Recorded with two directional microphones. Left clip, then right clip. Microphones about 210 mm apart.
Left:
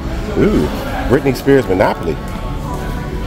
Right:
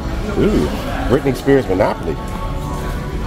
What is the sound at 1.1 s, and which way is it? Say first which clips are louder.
Speech: left 2 dB; 15° left (ahead or behind).